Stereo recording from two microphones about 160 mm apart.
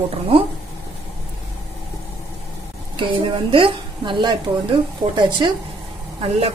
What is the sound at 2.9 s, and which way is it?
A woman's voice, 35° right (ahead or behind).